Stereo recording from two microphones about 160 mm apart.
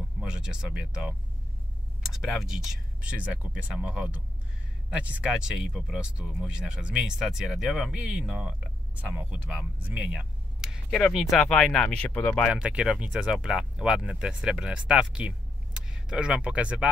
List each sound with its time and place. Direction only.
0.2 s speech: 5° right (ahead or behind)
10.9 s speech: 10° left (ahead or behind)
12.5 s speech: 5° right (ahead or behind)